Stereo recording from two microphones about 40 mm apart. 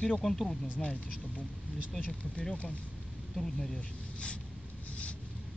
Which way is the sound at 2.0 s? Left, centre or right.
Left.